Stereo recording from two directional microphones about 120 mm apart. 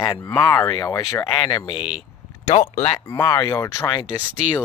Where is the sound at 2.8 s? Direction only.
45° left (ahead or behind).